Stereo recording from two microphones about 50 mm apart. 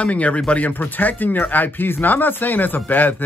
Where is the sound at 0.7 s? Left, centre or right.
Left.